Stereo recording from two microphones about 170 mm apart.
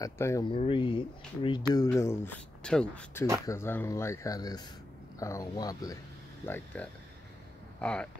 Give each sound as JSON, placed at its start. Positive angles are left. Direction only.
{"t": 0.0, "sound": "speech", "side_deg": 20}
{"t": 0.5, "sound": "speech", "side_deg": 30}
{"t": 1.9, "sound": "speech", "side_deg": 15}
{"t": 6.4, "sound": "speech", "side_deg": 10}